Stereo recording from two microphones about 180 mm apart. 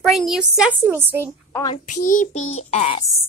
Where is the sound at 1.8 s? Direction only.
45° left (ahead or behind).